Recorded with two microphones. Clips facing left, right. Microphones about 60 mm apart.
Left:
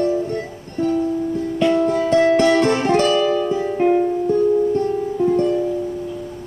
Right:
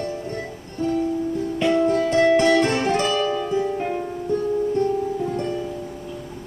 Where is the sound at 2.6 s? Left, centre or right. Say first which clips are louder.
Left 4 dB; left.